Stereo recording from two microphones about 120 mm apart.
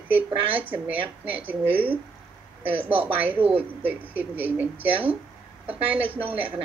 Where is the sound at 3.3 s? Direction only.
50° right (ahead or behind).